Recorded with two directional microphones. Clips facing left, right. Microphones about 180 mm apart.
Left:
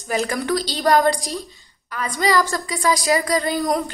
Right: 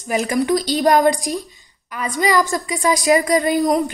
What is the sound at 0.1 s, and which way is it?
A woman's voice, 15° right (ahead or behind).